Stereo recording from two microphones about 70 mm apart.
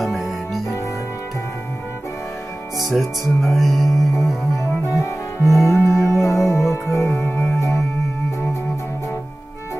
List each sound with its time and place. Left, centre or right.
0.0 s music: centre
2.9 s speech: centre
4.6 s music: left
5.9 s speech: centre
6.2 s music: left